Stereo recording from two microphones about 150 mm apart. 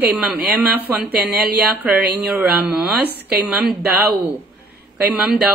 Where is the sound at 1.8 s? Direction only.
10° right (ahead or behind).